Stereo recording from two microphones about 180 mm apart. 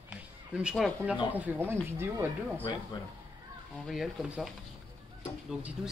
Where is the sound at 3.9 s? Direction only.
Centre (ahead or behind).